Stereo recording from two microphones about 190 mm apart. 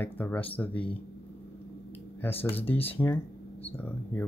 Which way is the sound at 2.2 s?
10° left (ahead or behind).